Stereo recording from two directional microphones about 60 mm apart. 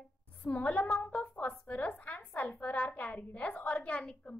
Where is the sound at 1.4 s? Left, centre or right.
Centre.